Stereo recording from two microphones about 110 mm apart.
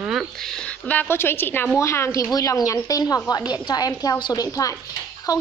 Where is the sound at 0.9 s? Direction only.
20° left (ahead or behind).